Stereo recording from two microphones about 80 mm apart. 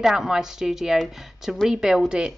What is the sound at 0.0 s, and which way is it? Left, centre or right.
A woman's voice, centre.